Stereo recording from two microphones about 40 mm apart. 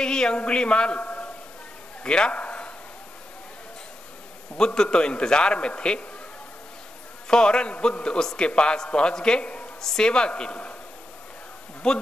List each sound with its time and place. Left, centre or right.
0.0 s a man's voice: centre
2.0 s a sound: left
4.6 s a man's voice: centre
7.2 s a man's voice: left
9.8 s a man's voice: centre
11.8 s a man's voice: left